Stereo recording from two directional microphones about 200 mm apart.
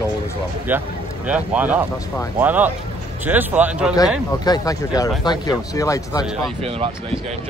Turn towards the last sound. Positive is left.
turn(degrees=-30)  # may be behind; listen again after turning